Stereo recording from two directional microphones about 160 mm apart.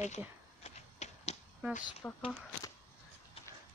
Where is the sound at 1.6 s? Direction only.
10° right (ahead or behind).